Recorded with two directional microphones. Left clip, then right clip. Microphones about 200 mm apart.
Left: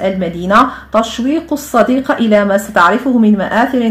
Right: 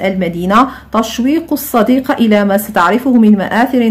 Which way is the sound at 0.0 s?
15° right (ahead or behind).